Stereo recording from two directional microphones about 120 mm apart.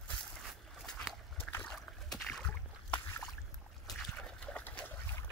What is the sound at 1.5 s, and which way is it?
Splash, 20° left (ahead or behind).